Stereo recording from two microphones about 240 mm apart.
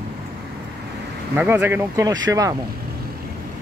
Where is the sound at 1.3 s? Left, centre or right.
Centre.